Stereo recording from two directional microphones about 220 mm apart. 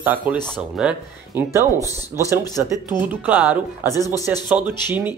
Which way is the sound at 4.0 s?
15° left (ahead or behind).